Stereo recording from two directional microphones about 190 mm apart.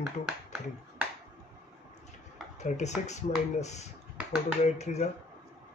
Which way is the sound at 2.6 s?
35° left (ahead or behind).